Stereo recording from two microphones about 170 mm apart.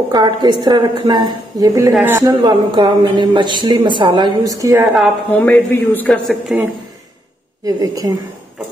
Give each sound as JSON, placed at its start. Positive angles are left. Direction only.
{"t": 0.1, "sound": "speech", "side_deg": -25}
{"t": 1.9, "sound": "a woman's voice", "side_deg": -5}
{"t": 2.4, "sound": "speech", "side_deg": -25}
{"t": 5.4, "sound": "a man's voice", "side_deg": 10}
{"t": 6.5, "sound": "speech", "side_deg": -5}
{"t": 7.6, "sound": "speech", "side_deg": -20}